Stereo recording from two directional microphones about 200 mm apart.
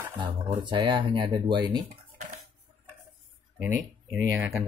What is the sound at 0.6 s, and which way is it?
Speech, 25° right (ahead or behind).